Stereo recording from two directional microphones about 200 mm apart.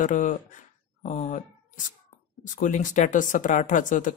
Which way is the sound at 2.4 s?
40° left (ahead or behind).